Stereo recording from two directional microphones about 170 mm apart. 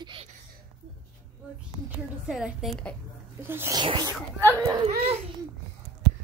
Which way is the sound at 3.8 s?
30° right (ahead or behind).